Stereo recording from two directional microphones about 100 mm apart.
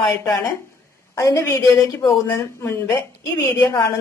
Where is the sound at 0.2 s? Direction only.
35° left (ahead or behind).